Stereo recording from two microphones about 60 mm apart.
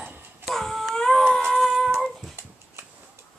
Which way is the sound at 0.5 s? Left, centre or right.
Centre.